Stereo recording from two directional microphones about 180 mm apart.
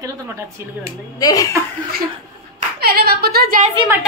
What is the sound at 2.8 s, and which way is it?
Speech, 55° right (ahead or behind).